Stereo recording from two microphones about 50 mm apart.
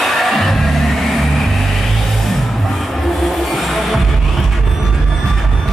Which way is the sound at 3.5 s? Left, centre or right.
Centre.